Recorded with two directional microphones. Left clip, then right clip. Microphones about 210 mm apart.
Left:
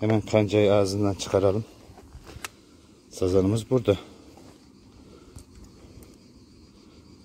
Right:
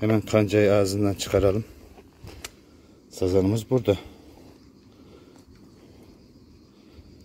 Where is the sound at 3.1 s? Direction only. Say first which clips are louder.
Even; centre (ahead or behind).